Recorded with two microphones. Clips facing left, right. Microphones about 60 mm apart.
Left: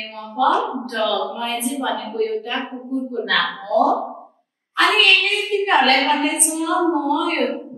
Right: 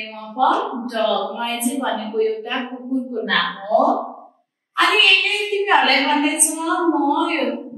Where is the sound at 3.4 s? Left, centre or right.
Centre.